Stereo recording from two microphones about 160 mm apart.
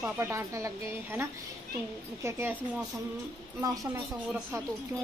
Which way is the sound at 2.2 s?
15° right (ahead or behind).